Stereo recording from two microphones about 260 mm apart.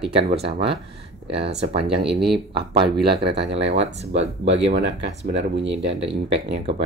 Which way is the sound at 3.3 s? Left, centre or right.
Right.